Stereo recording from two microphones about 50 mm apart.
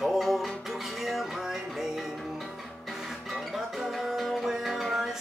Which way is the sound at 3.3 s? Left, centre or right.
Centre.